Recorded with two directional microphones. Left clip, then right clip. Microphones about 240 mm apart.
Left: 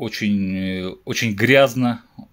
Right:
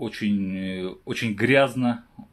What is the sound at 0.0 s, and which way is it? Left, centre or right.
Speech, left.